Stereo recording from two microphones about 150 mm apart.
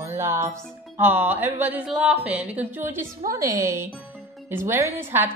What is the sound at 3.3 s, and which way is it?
Child singing, 20° right (ahead or behind).